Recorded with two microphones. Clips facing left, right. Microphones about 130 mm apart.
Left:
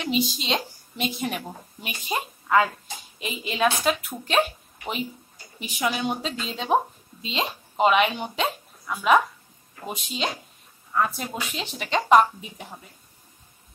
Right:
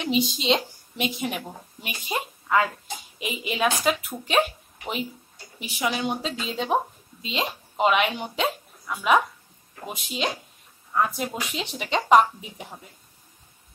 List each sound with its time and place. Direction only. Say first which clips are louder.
0.0 s a woman's voice: right 1 dB; 20° right (ahead or behind)
3.2 s a woman's voice: left 1 dB; 10° right (ahead or behind)
5.9 s a woman's voice: even; centre (ahead or behind); by 12.3 s 20° right (ahead or behind)